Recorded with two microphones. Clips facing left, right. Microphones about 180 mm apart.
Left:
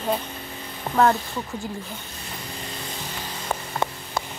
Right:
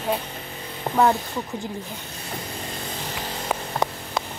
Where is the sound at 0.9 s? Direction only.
25° right (ahead or behind).